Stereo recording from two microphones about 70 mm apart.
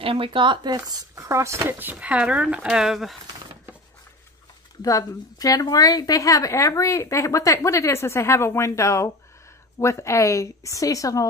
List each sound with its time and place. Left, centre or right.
0.6 s speech: right
1.6 s a woman's voice: right
2.0 s speech: centre
2.7 s speech: centre
4.8 s a woman's voice: left